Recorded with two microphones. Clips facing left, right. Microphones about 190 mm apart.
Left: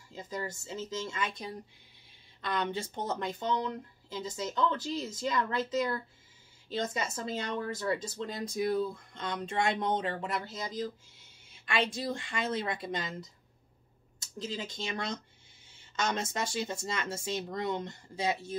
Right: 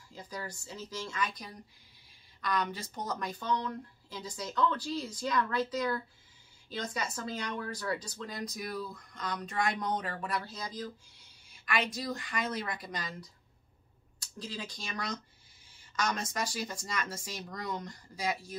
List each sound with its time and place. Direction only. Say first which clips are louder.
0.1 s speech: left 4 dB; 20° left (ahead or behind)